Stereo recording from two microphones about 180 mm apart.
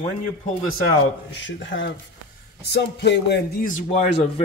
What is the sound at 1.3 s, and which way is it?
Speech, 90° left.